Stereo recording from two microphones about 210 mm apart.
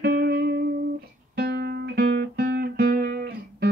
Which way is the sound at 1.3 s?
50° right (ahead or behind).